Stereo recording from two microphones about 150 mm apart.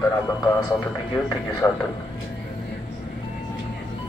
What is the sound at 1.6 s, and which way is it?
Speech, 20° left (ahead or behind).